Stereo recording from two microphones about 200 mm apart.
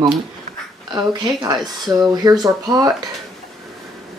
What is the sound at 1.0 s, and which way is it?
Speech, 20° right (ahead or behind).